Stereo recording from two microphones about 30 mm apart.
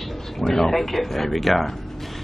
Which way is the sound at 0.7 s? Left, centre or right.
Centre.